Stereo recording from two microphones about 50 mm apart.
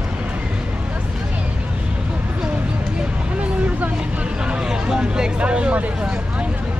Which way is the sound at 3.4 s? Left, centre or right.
Right.